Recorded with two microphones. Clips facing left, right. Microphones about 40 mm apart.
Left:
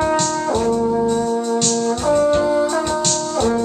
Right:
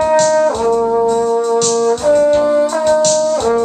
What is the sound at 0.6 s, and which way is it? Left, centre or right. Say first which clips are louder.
Brass instrument: right 4 dB; right.